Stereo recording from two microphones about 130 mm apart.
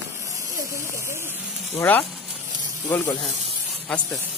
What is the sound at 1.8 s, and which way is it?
Speech, 15° left (ahead or behind).